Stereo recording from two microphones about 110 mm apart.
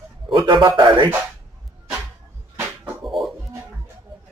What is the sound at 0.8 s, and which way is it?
Music, 40° right (ahead or behind).